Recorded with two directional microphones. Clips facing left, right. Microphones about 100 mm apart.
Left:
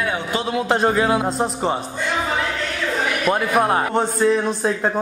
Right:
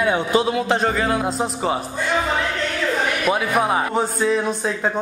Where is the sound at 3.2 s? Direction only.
Centre (ahead or behind).